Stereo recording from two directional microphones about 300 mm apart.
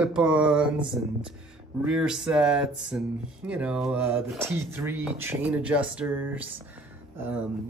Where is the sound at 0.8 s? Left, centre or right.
Centre.